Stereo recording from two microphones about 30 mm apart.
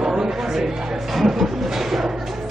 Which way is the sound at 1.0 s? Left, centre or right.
Centre.